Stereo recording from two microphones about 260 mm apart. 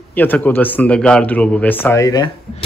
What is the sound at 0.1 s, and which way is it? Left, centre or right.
Speech, centre.